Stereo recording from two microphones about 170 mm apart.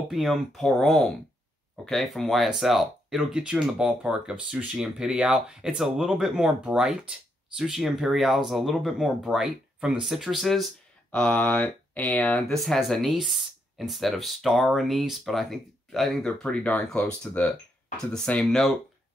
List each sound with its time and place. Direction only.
0.1 s speech: centre (ahead or behind)